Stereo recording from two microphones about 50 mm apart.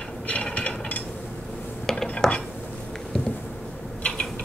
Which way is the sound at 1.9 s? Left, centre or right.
Centre.